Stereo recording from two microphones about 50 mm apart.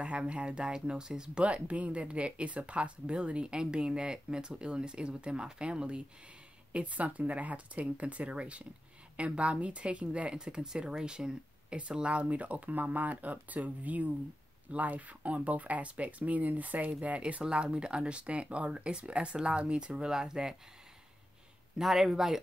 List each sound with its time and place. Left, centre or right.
0.0 s speech: right
1.4 s speech: right
21.7 s speech: centre